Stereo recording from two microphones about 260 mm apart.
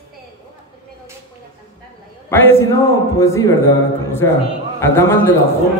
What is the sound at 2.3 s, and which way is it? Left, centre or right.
Speech, centre.